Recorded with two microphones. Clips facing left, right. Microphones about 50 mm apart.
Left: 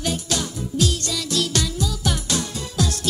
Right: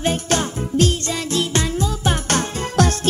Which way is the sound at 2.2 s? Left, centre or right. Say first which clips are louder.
Right 5 dB; right.